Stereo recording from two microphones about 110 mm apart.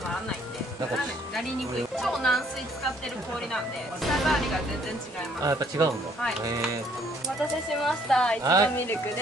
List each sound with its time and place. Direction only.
2.0 s speech: centre (ahead or behind)
3.5 s speech: centre (ahead or behind)
5.4 s speech: 35° right (ahead or behind)
7.8 s a woman's voice: 5° left (ahead or behind)